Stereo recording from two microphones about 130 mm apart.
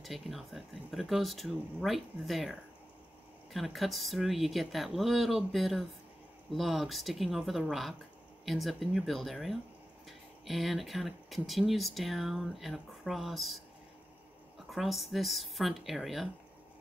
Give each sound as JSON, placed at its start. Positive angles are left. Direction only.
{"t": 0.0, "sound": "speech", "side_deg": 0}
{"t": 3.5, "sound": "speech", "side_deg": 0}
{"t": 14.7, "sound": "speech", "side_deg": 0}